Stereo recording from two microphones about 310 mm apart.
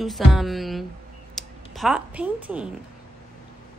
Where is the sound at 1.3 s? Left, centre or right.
Centre.